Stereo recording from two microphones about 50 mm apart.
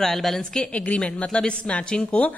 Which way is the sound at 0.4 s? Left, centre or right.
Left.